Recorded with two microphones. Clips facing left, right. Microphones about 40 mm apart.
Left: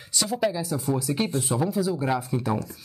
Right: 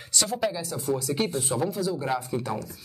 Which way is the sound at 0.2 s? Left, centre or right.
Centre.